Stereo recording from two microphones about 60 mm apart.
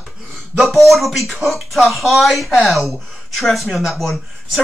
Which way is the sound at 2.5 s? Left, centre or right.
Centre.